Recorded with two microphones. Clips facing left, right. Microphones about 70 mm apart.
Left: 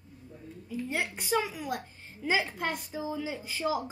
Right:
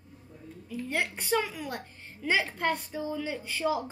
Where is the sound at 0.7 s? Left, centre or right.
Centre.